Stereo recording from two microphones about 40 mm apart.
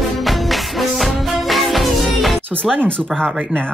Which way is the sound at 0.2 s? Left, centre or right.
Centre.